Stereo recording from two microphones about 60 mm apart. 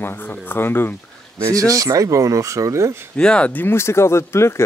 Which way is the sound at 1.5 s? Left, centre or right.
Right.